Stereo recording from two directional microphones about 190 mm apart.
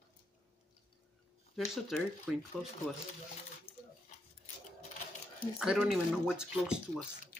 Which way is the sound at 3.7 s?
30° left (ahead or behind).